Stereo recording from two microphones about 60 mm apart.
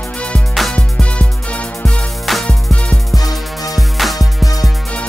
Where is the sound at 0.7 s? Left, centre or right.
Centre.